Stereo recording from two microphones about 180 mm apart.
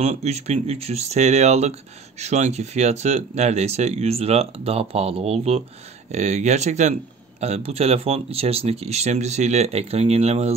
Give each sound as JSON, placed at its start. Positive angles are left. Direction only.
{"t": 0.0, "sound": "speech", "side_deg": -35}